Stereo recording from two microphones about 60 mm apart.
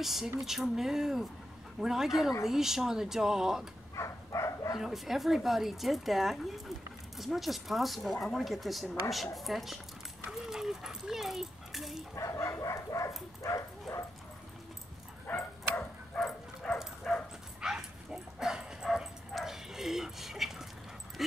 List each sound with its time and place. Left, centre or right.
0.0 s speech: centre
3.9 s dog: left
4.7 s speech: centre
10.4 s dog: centre
12.2 s bow-wow: left
12.6 s dog: left
15.2 s dog: left
16.1 s a sound: centre
16.7 s dog: left
17.6 s bow-wow: centre
21.2 s dog: centre